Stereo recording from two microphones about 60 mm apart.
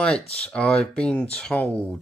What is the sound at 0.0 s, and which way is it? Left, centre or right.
Speech, centre.